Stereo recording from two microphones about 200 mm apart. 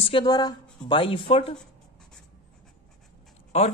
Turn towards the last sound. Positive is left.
turn(degrees=30)  # may be behind; listen again after turning